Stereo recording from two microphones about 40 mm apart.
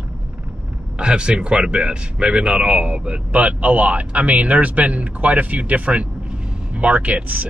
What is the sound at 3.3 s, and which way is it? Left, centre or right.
Speech, right.